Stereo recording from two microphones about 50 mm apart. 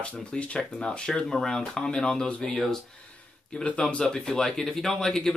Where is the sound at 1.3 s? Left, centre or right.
Centre.